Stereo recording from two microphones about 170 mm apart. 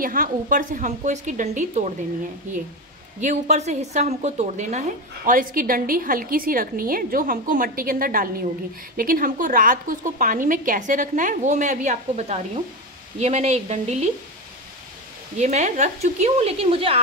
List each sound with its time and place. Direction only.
0.0 s a woman's voice: 55° right (ahead or behind)
3.2 s a woman's voice: 45° right (ahead or behind)
15.3 s speech: 45° right (ahead or behind)